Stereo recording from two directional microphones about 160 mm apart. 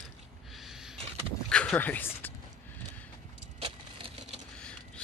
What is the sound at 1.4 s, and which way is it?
Dog, 5° left (ahead or behind).